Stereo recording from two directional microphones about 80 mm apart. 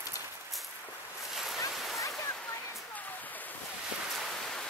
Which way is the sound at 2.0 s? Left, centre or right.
Left.